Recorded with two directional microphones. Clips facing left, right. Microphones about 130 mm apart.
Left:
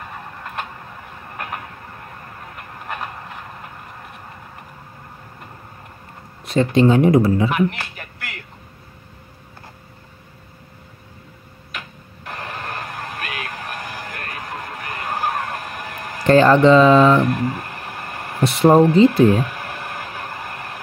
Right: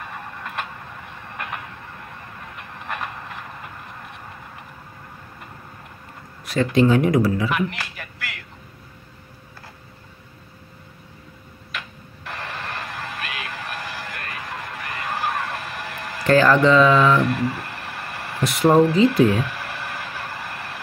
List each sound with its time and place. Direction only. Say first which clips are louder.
0.0 s printer: even; centre (ahead or behind)
1.3 s vehicle: left 2 dB; 45° left (ahead or behind)
2.4 s a sound: left 1 dB; 45° left (ahead or behind)
2.9 s rail transport: left 1 dB; centre (ahead or behind)
6.4 s speech: left 3 dB; 25° left (ahead or behind)
7.4 s speech: left 4 dB; 50° left (ahead or behind)
12.3 s music: left 2 dB; 45° left (ahead or behind)
16.3 s speech: left 3 dB; 30° left (ahead or behind)
16.5 s mantra: left 4 dB; 30° left (ahead or behind)
17.2 s a sound: left 2 dB; 45° left (ahead or behind)
18.4 s speech: left 4 dB; 30° left (ahead or behind)
18.7 s speech: left 3 dB; 50° left (ahead or behind)
18.9 s a sound: left 4 dB; 40° left (ahead or behind)